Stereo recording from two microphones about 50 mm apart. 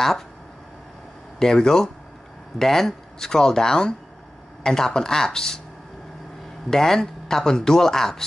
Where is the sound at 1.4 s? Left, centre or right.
Centre.